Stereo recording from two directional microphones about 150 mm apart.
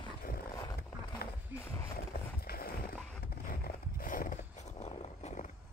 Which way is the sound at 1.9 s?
85° left.